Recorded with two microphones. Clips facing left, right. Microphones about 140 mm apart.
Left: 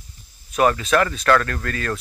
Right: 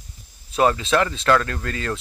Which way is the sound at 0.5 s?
25° right (ahead or behind).